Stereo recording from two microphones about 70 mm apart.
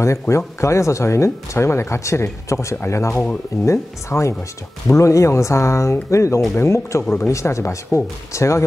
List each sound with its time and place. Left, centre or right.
0.0 s speech: left